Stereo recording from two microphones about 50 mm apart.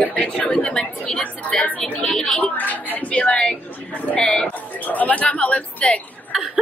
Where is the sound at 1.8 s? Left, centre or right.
Left.